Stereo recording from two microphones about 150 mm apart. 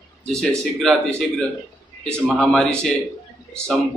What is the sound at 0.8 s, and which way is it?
A man's voice, 5° left (ahead or behind).